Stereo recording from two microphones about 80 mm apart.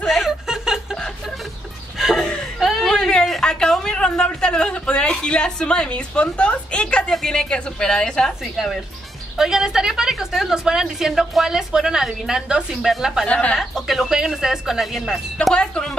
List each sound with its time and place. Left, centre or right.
0.0 s chuckle: centre
2.1 s a sound: centre
2.6 s whimper: centre
3.1 s speech: centre
9.4 s a woman's voice: centre
13.3 s speech: centre
13.6 s speech: centre
15.5 s speech: centre